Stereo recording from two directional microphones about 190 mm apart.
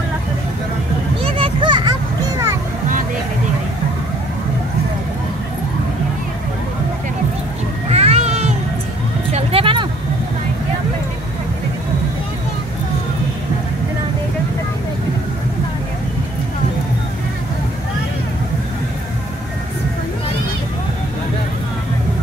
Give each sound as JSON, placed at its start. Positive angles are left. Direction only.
{"t": 1.2, "sound": "children playing", "side_deg": -30}
{"t": 7.9, "sound": "a sound", "side_deg": -35}
{"t": 9.3, "sound": "vehicle", "side_deg": -30}